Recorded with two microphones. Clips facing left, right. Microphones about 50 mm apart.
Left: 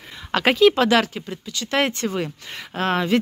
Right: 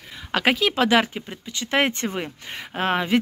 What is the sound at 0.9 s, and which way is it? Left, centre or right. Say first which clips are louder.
Speech: left 1 dB; centre.